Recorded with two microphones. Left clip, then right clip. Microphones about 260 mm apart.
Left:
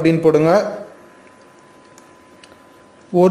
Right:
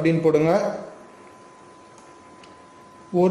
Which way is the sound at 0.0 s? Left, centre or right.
Centre.